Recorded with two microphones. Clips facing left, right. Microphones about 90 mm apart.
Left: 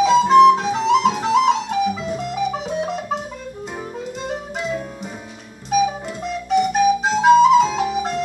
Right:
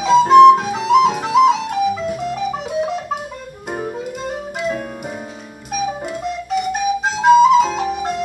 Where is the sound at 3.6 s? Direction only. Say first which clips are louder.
Right 8 dB; 50° right (ahead or behind).